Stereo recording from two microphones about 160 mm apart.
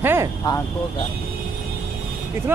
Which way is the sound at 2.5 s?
10° right (ahead or behind).